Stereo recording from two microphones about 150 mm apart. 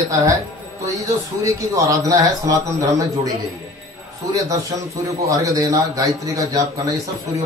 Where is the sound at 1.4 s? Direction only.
20° right (ahead or behind).